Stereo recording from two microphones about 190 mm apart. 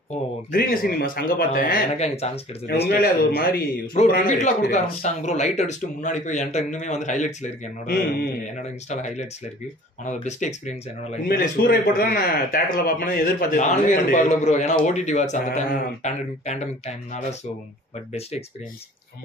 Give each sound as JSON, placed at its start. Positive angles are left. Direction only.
{"t": 0.5, "sound": "speech", "side_deg": 50}
{"t": 2.0, "sound": "speech", "side_deg": 35}
{"t": 2.6, "sound": "speech", "side_deg": 60}
{"t": 4.3, "sound": "speech", "side_deg": 40}
{"t": 7.8, "sound": "a man's voice", "side_deg": 55}
{"t": 8.8, "sound": "speech", "side_deg": 35}
{"t": 11.2, "sound": "speech", "side_deg": 50}